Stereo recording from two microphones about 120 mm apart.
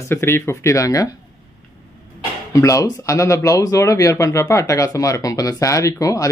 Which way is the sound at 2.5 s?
25° left (ahead or behind).